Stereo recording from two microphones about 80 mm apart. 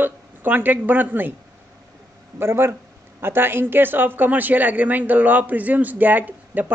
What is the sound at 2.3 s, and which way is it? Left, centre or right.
Speech, right.